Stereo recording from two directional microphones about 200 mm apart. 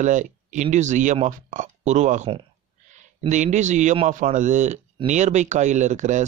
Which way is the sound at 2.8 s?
35° right (ahead or behind).